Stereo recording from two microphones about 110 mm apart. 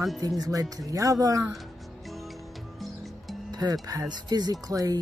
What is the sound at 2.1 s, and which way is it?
Music, centre (ahead or behind).